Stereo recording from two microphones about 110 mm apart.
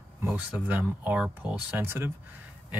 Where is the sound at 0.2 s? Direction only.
15° right (ahead or behind).